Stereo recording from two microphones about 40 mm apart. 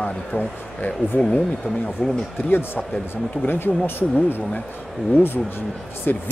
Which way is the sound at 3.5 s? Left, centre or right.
Left.